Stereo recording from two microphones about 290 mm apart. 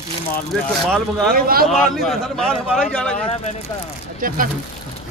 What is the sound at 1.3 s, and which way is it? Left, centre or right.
Speech, right.